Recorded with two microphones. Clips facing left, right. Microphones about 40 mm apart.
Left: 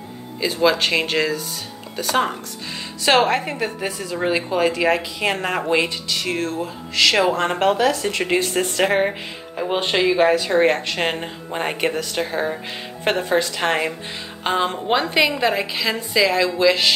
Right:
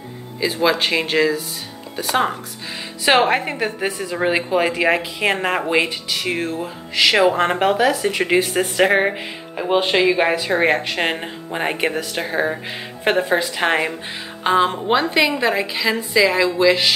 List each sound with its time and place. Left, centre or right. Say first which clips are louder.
0.4 s a woman's voice: even; centre
3.1 s a woman's voice: right 1 dB; right
14.4 s a woman's voice: right 4 dB; centre